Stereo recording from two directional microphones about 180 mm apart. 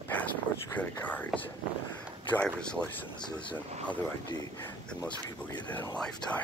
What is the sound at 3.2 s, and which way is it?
Speech, 25° left (ahead or behind).